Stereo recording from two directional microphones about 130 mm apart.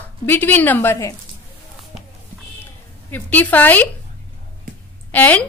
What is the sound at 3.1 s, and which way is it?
Speech, 15° left (ahead or behind).